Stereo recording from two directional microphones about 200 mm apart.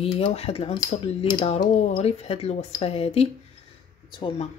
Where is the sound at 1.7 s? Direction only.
35° left (ahead or behind).